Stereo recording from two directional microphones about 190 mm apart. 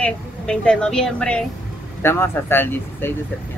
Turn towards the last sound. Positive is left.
turn(degrees=10)  # may be behind; listen again after turning